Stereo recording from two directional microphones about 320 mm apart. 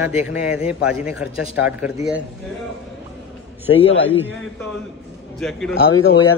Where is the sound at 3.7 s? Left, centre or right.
Left.